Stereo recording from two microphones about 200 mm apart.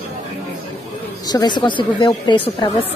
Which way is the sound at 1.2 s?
20° left (ahead or behind).